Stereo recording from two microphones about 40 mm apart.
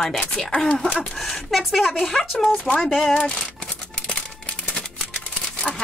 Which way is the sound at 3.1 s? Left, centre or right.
Left.